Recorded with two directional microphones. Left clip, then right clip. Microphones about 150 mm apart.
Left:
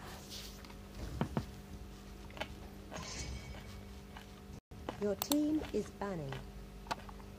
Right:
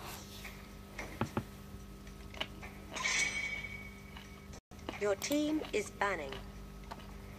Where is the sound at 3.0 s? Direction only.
45° right (ahead or behind).